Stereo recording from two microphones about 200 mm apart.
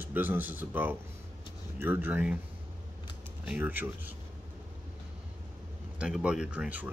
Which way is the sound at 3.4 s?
10° right (ahead or behind).